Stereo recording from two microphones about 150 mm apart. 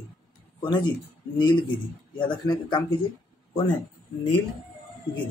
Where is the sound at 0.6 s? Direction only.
30° left (ahead or behind).